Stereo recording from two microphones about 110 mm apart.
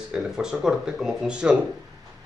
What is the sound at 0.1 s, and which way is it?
Speech, 5° right (ahead or behind).